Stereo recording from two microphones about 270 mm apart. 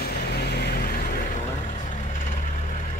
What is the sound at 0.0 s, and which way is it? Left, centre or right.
Vehicle, left.